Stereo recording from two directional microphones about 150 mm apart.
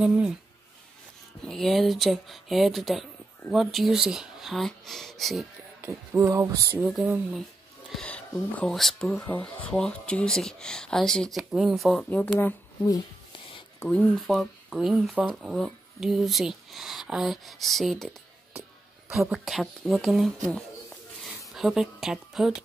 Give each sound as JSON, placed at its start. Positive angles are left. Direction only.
{"t": 0.0, "sound": "speech", "side_deg": -10}
{"t": 1.4, "sound": "speech", "side_deg": 0}
{"t": 5.8, "sound": "a sound", "side_deg": -20}
{"t": 6.8, "sound": "speech", "side_deg": -5}
{"t": 7.9, "sound": "speech", "side_deg": 10}
{"t": 12.8, "sound": "a sound", "side_deg": 25}
{"t": 13.8, "sound": "speech", "side_deg": 5}
{"t": 21.5, "sound": "a woman's voice", "side_deg": 0}